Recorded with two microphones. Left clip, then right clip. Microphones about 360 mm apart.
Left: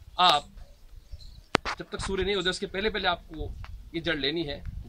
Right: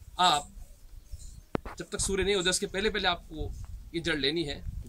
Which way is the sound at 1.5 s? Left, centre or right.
Left.